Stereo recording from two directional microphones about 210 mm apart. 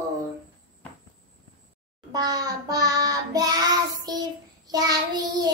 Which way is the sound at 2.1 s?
20° right (ahead or behind).